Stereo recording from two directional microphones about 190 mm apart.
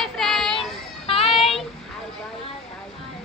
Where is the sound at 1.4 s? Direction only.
Centre (ahead or behind).